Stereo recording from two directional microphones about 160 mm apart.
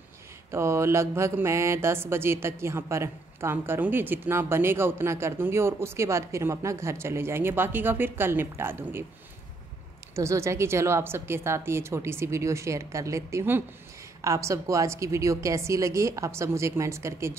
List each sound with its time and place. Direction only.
0.5 s mantra: 15° right (ahead or behind)
10.1 s mantra: 20° right (ahead or behind)
14.2 s a woman's voice: 20° right (ahead or behind)